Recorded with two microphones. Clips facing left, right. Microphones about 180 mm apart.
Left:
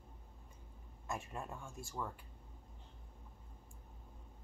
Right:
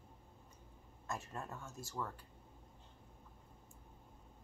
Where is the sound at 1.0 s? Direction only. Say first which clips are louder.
Left 1 dB; 15° left (ahead or behind).